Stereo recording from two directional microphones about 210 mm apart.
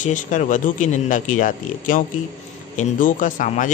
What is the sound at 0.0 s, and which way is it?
A man's voice, 35° left (ahead or behind).